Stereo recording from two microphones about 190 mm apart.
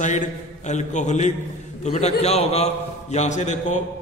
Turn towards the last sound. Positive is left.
turn(degrees=40)  # may be behind; listen again after turning